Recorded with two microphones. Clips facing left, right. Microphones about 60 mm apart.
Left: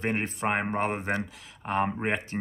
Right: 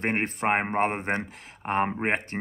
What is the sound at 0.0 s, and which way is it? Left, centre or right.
Speech, right.